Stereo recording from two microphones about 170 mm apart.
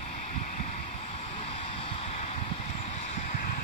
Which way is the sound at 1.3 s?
35° left (ahead or behind).